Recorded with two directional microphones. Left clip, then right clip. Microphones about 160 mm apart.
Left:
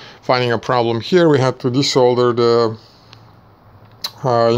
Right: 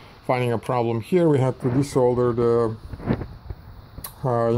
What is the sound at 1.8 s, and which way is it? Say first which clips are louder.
Speech: left 7 dB; 20° left (ahead or behind).